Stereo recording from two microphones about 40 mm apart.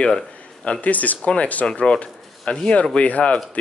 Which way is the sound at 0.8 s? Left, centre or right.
Left.